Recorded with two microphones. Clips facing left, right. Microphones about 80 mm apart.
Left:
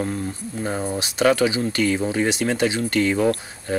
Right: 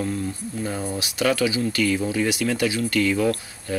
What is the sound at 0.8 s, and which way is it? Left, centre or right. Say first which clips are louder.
Speech: left 5 dB; left.